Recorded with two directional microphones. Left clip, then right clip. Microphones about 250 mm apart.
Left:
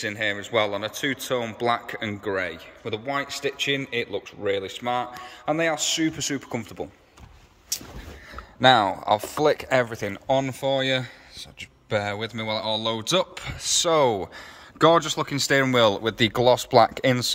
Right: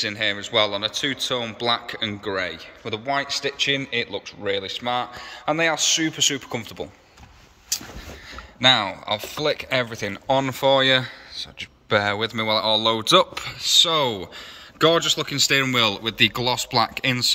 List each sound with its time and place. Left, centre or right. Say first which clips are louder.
0.0 s speech: right 3 dB; centre
8.5 s speech: left 1 dB; left